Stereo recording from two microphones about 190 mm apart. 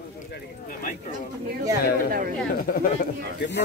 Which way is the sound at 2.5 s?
50° left (ahead or behind).